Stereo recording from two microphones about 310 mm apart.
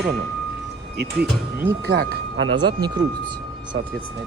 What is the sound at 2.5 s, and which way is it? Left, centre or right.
Speech, centre.